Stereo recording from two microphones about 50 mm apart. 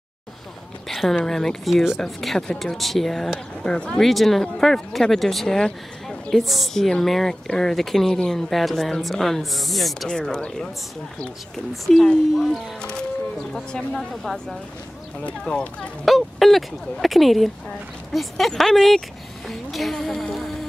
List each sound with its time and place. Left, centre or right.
0.8 s a sound: centre
1.2 s speech: centre
3.6 s speech: centre
4.0 s speech: centre
10.0 s speech: centre
11.7 s speech: centre
13.7 s speech: centre
15.4 s speech: left
16.1 s speech: centre
18.5 s speech: centre